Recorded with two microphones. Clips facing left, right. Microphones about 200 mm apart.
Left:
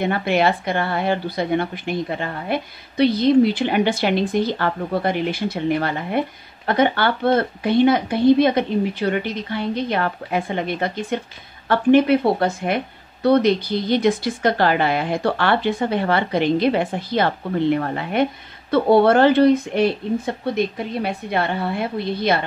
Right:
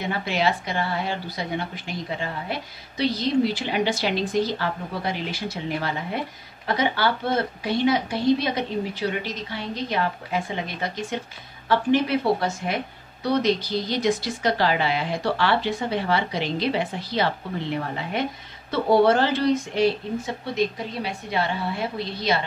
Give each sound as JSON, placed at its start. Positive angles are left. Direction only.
{"t": 0.0, "sound": "speech", "side_deg": 55}